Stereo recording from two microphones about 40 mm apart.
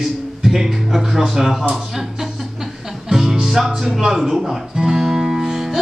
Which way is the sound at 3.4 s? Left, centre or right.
Centre.